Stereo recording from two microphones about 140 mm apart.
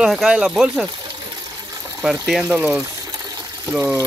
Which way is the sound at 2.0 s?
5° right (ahead or behind).